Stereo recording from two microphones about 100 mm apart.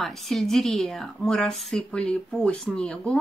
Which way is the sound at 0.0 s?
Centre (ahead or behind).